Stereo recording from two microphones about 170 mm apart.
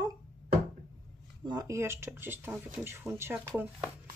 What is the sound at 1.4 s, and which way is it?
Speech, 25° right (ahead or behind).